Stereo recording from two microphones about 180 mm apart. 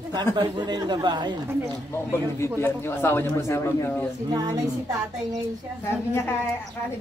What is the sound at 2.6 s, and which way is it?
A man's voice, 15° left (ahead or behind).